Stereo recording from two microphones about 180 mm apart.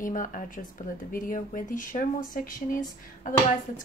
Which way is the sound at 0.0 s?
45° left (ahead or behind).